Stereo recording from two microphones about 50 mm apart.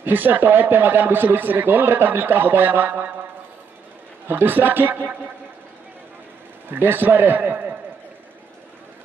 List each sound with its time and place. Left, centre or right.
0.0 s speech: right
4.3 s speech: right
6.7 s a man's voice: right